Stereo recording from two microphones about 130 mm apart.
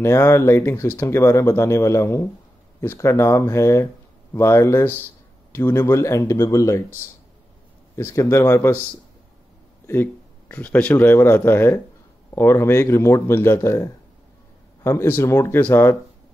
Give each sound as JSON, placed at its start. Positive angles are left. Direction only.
{"t": 0.0, "sound": "speech", "side_deg": 20}
{"t": 7.9, "sound": "speech", "side_deg": 20}
{"t": 10.5, "sound": "speech", "side_deg": 10}